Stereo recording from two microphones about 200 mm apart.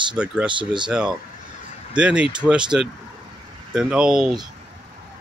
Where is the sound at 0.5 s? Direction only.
25° right (ahead or behind).